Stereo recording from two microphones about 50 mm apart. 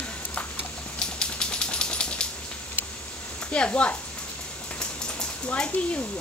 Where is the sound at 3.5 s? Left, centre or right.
Left.